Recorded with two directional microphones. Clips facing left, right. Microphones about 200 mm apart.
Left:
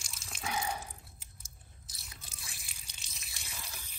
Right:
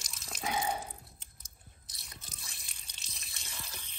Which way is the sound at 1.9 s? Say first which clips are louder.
Right 2 dB; centre (ahead or behind).